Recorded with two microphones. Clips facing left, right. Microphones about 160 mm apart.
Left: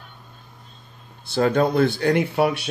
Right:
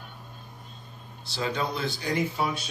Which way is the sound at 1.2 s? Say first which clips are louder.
Left 11 dB; 55° left (ahead or behind).